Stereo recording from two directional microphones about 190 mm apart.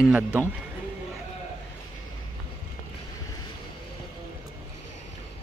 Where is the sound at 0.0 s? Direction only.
5° right (ahead or behind).